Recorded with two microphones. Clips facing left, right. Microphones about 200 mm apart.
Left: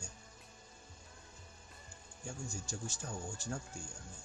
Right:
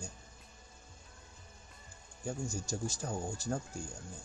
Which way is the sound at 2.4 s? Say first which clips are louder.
Right 6 dB; 40° right (ahead or behind).